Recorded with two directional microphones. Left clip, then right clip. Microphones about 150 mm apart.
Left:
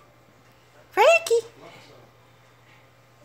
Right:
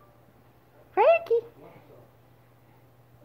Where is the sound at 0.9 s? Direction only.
10° left (ahead or behind).